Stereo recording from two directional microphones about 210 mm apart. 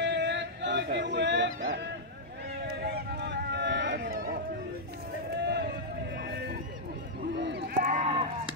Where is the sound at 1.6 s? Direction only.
55° right (ahead or behind).